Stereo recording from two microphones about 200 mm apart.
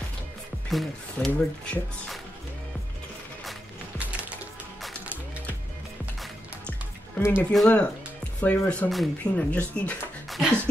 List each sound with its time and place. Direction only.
0.7 s speech: centre (ahead or behind)
7.2 s speech: 10° left (ahead or behind)